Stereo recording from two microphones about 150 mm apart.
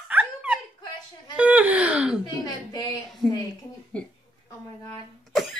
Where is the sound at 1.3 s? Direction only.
10° right (ahead or behind).